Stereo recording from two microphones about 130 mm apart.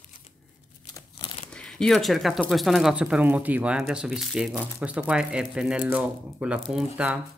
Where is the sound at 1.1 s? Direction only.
40° left (ahead or behind).